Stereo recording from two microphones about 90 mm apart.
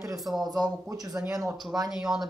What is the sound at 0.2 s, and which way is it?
Speech, 5° right (ahead or behind).